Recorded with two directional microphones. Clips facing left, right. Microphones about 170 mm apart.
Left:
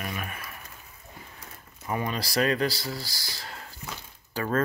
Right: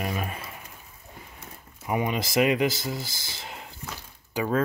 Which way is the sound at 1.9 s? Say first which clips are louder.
Right 3 dB; 15° right (ahead or behind).